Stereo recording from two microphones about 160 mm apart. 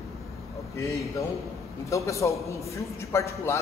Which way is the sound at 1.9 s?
20° left (ahead or behind).